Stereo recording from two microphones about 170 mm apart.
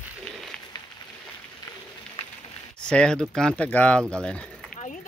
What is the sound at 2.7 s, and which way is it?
Speech, 5° left (ahead or behind).